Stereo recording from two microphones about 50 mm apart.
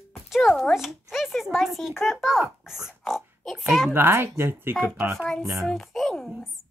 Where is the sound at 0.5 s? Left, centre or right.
Centre.